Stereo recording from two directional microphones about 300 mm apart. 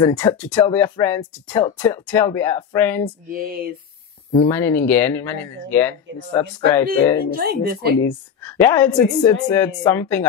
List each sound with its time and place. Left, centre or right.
0.0 s speech: centre
3.3 s speech: right
4.3 s speech: centre
7.3 s speech: right
8.5 s speech: centre